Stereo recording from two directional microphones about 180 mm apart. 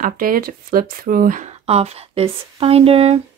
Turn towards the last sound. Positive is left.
turn(degrees=-35)  # may be behind; listen again after turning